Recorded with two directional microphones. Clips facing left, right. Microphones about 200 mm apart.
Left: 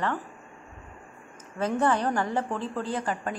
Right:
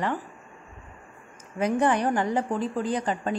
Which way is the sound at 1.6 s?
15° right (ahead or behind).